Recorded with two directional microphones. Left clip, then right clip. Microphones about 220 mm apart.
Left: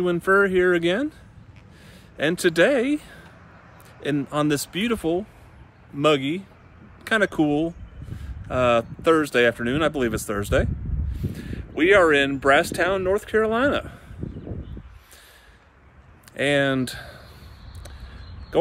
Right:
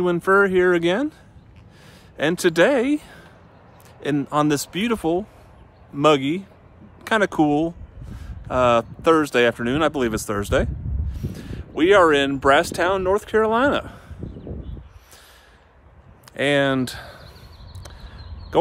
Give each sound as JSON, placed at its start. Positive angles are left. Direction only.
{"t": 0.0, "sound": "speech", "side_deg": -15}
{"t": 2.1, "sound": "speech", "side_deg": -15}
{"t": 16.3, "sound": "speech", "side_deg": -10}
{"t": 18.5, "sound": "speech", "side_deg": -15}